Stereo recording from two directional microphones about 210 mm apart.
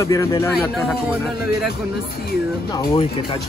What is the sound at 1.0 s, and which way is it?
Speech, centre (ahead or behind).